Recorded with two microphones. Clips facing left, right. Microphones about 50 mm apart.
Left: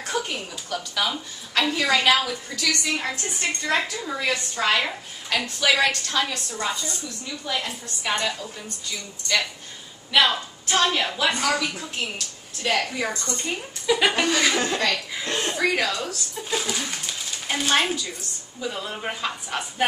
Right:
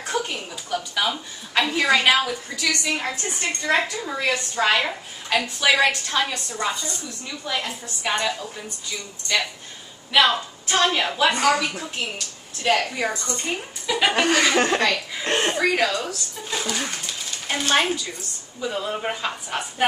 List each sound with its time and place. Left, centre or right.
0.7 s a woman's voice: centre
14.6 s speech: right
15.5 s speech: centre
16.9 s a sound: centre
18.6 s a woman's voice: centre